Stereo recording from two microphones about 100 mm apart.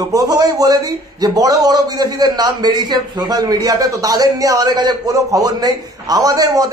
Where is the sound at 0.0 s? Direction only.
35° right (ahead or behind).